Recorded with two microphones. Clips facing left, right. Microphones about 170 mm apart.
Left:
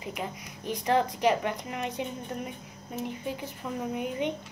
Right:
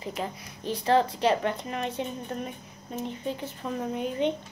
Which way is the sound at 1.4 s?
15° left (ahead or behind).